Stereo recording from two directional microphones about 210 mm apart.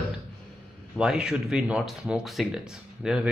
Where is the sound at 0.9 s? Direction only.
5° right (ahead or behind).